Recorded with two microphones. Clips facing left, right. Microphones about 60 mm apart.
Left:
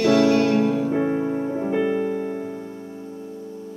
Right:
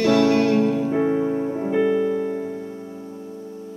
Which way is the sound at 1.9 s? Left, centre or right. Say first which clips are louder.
Right 3 dB; centre.